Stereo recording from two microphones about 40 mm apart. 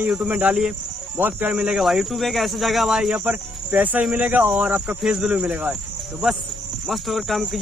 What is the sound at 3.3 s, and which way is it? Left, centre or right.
Speech, right.